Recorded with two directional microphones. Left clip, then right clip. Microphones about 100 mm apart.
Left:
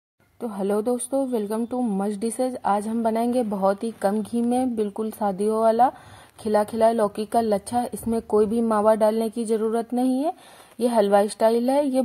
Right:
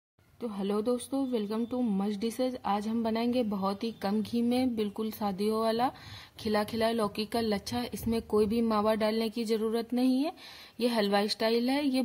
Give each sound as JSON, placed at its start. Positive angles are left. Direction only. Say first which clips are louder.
{"t": 0.4, "sound": "a woman's voice", "louder": "left 8 dB", "side_deg": 40}